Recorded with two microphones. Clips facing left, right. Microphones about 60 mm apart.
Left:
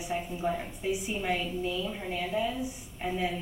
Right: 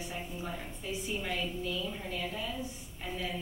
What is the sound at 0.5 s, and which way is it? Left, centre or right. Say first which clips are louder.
A woman's voice: left 9 dB; left.